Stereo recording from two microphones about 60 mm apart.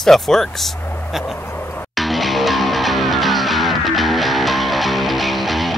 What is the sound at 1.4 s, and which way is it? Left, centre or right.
Music, left.